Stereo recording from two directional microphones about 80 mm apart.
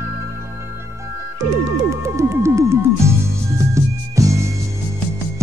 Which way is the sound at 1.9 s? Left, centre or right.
Right.